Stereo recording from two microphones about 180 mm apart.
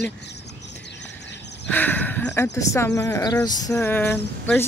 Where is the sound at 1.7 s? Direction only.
10° left (ahead or behind).